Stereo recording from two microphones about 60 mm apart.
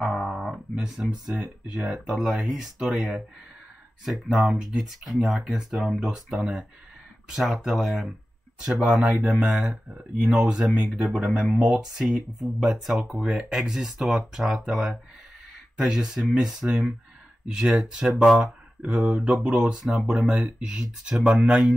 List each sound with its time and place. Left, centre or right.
0.0 s music: centre
2.1 s speech: centre
4.0 s speech: centre
11.9 s speech: centre